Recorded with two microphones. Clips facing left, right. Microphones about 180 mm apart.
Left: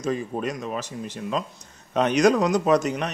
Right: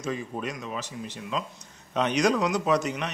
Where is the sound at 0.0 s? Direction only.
40° left (ahead or behind).